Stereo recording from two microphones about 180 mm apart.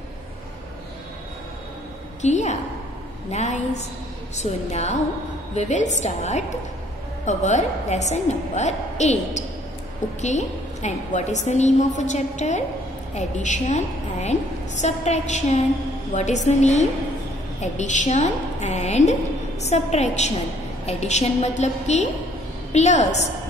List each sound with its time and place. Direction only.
2.2 s a woman's voice: 40° left (ahead or behind)